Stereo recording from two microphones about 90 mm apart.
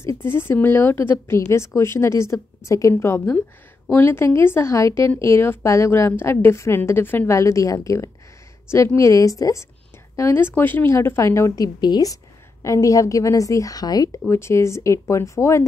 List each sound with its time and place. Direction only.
0.0 s a woman's voice: 30° left (ahead or behind)
14.3 s a woman's voice: 30° left (ahead or behind)